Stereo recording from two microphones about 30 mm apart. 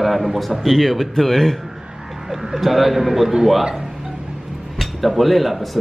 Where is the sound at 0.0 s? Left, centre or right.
Centre.